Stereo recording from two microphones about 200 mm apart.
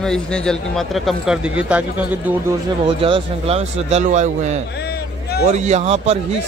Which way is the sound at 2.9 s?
25° right (ahead or behind).